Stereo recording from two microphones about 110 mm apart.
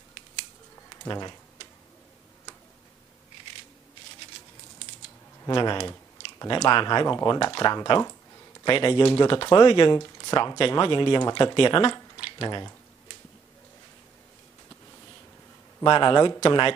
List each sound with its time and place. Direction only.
0.8 s typing: 40° left (ahead or behind)
5.4 s a man's voice: 40° left (ahead or behind)
9.9 s speech: 35° left (ahead or behind)
15.8 s a man's voice: 40° left (ahead or behind)